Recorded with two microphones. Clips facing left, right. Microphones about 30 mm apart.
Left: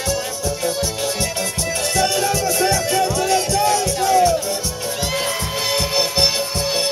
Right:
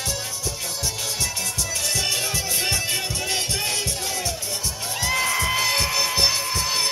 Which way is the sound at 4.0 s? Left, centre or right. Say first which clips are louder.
Left 14 dB; centre.